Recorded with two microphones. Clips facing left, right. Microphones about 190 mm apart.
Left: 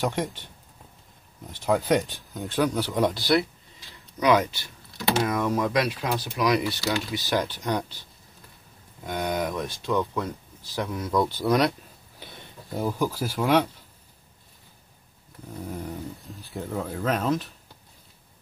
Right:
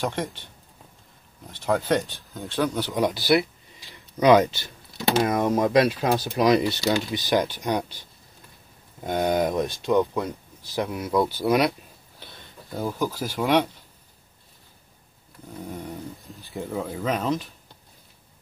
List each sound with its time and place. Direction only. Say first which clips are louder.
1.7 s speech: even; 5° left (ahead or behind)
3.9 s speech: right 4 dB; 25° right (ahead or behind)
9.0 s speech: right 5 dB; 25° right (ahead or behind); by 11.7 s 5° right (ahead or behind)
12.7 s speech: left 1 dB; 5° left (ahead or behind)
15.7 s speech: left 1 dB; 5° left (ahead or behind)